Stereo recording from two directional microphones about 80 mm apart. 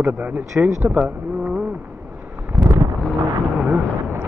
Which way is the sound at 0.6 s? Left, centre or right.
Right.